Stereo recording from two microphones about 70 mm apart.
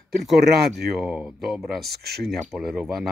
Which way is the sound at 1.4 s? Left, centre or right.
Centre.